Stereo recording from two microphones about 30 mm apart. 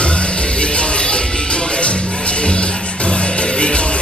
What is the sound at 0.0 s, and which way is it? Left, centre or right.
Music, left.